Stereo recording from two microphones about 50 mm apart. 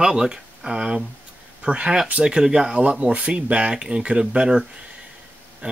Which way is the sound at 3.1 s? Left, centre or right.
Right.